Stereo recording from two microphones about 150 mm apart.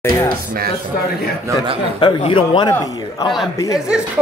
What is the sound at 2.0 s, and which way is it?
A man's voice, 30° left (ahead or behind).